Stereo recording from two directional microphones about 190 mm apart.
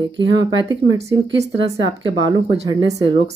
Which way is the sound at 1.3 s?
65° right (ahead or behind).